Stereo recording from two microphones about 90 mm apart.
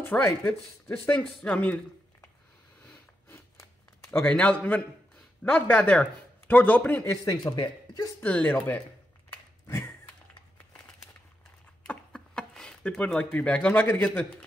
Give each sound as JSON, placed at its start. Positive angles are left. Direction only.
{"t": 0.0, "sound": "speech", "side_deg": 25}
{"t": 1.4, "sound": "speech", "side_deg": 15}
{"t": 4.3, "sound": "speech", "side_deg": 15}
{"t": 7.0, "sound": "speech", "side_deg": 40}
{"t": 7.5, "sound": "speech", "side_deg": 55}
{"t": 8.2, "sound": "speech", "side_deg": 15}
{"t": 11.8, "sound": "a sound", "side_deg": 10}